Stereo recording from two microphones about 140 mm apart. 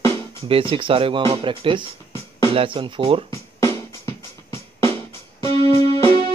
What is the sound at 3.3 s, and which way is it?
Music, 20° left (ahead or behind).